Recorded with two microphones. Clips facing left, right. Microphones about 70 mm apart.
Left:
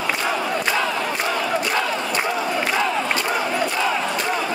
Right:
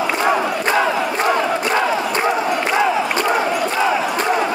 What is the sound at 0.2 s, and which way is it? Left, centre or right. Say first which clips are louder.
Crowd: right 5 dB; right.